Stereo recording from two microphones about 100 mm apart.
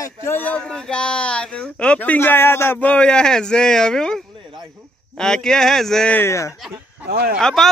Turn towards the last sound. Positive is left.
turn(degrees=5)  # may be behind; listen again after turning